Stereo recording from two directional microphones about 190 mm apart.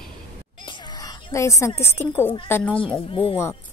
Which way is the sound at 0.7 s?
15° left (ahead or behind).